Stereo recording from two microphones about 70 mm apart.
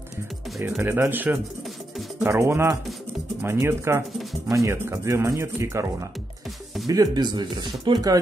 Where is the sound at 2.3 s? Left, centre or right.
Right.